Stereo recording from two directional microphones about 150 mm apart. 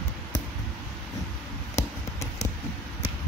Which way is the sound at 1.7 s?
50° left (ahead or behind).